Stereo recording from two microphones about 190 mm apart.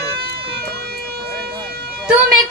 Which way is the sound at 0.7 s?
55° right (ahead or behind).